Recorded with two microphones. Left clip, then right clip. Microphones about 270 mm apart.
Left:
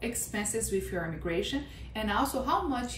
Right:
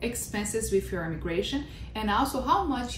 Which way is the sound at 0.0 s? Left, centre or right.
Centre.